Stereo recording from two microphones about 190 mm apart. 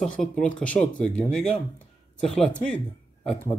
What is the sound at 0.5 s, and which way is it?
Speech, 5° left (ahead or behind).